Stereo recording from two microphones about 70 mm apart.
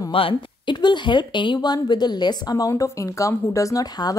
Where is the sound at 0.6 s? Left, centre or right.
Left.